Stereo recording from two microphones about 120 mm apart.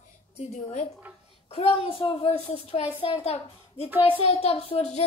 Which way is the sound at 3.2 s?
60° left (ahead or behind).